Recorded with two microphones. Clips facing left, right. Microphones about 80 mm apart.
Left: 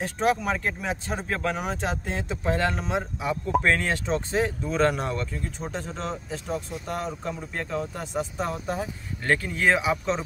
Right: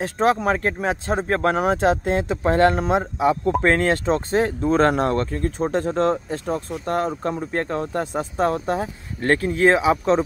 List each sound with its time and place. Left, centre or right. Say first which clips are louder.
0.0 s speech: right 5 dB; right
3.2 s speech: right 10 dB; right
3.6 s speech: right 6 dB; right
4.6 s speech: right 6 dB; right
8.2 s speech: right 6 dB; right